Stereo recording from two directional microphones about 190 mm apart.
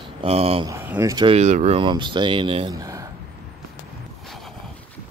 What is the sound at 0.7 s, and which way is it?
Speech, 15° right (ahead or behind).